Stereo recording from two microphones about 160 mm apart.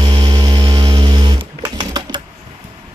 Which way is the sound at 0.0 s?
30° right (ahead or behind).